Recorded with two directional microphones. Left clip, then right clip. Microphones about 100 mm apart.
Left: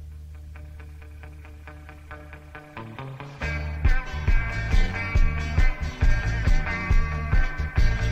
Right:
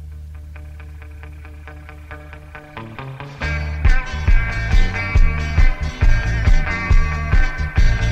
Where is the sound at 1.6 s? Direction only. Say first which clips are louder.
Right 6 dB; 35° left (ahead or behind).